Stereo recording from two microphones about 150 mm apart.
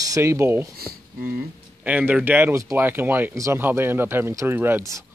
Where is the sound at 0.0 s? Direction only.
20° right (ahead or behind).